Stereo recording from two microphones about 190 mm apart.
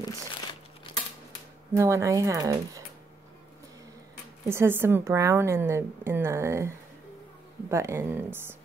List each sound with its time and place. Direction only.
1.8 s a woman's voice: 15° right (ahead or behind)
4.5 s a woman's voice: 10° right (ahead or behind)
7.7 s a woman's voice: 15° right (ahead or behind)